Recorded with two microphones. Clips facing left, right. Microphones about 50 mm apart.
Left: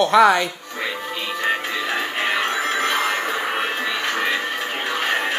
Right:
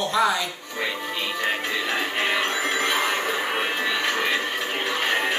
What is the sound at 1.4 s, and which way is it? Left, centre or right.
Music, centre.